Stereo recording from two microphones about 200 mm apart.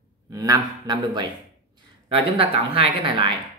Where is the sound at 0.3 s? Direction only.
20° right (ahead or behind).